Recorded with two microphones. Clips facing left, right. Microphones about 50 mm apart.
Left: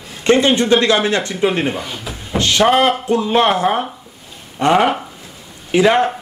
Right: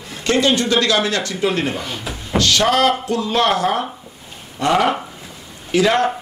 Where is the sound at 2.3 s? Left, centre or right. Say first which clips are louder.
Left 2 dB; left.